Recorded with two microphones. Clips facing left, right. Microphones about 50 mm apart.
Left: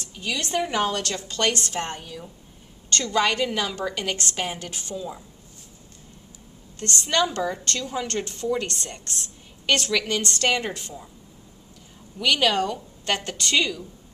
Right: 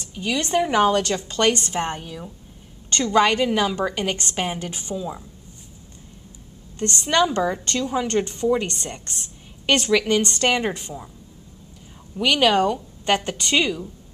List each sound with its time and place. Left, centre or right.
0.0 s a woman's voice: centre
7.1 s a woman's voice: centre
12.2 s a woman's voice: centre